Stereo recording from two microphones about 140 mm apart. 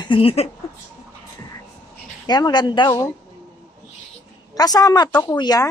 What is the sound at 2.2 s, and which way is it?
Speech, 30° left (ahead or behind).